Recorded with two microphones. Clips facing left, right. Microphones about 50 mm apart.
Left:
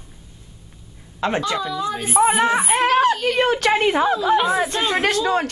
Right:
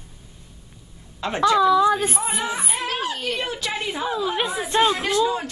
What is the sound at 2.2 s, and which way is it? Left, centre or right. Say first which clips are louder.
Speech: left 10 dB; left.